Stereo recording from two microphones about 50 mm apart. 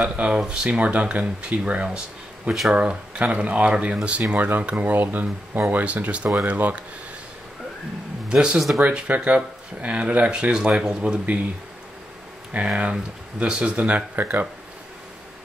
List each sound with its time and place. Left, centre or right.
0.0 s speech: right
8.3 s speech: centre
12.5 s speech: right